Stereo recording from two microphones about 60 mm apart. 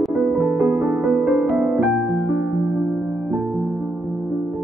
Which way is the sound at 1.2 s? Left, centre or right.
Right.